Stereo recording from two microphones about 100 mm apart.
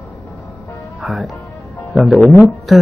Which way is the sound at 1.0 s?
Centre (ahead or behind).